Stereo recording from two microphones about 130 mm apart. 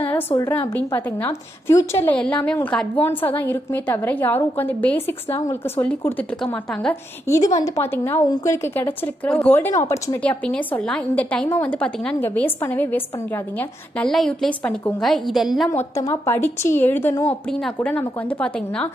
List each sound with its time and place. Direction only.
0.7 s a woman's voice: 15° left (ahead or behind)
2.1 s a woman's voice: 10° left (ahead or behind)
6.4 s a woman's voice: 5° left (ahead or behind)
7.2 s a woman's voice: 25° left (ahead or behind)
10.2 s a woman's voice: 10° left (ahead or behind)
16.0 s a woman's voice: 20° left (ahead or behind)
17.8 s a woman's voice: 10° left (ahead or behind)